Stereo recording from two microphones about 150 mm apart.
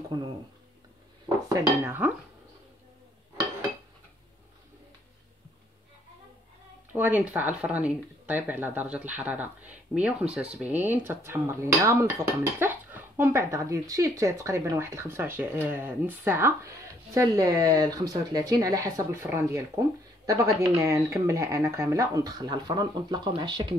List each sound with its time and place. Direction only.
1.5 s speech: 15° right (ahead or behind)
6.9 s speech: 10° right (ahead or behind); by 23.7 s 30° right (ahead or behind)